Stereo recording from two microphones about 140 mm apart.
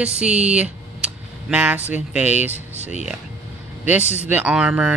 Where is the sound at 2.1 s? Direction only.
10° right (ahead or behind).